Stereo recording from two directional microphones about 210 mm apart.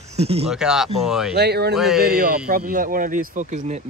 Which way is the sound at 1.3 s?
50° right (ahead or behind).